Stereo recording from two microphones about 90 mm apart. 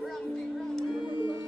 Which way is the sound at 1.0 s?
65° left (ahead or behind).